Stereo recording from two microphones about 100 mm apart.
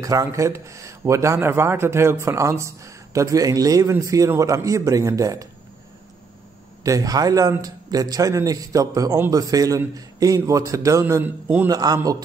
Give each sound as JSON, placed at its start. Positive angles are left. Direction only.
{"t": 0.0, "sound": "speech", "side_deg": -35}
{"t": 6.8, "sound": "speech", "side_deg": -35}
{"t": 11.2, "sound": "a man's voice", "side_deg": -15}
{"t": 11.7, "sound": "speech", "side_deg": -40}